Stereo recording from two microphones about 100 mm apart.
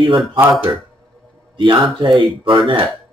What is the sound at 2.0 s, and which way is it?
Speech, 55° right (ahead or behind).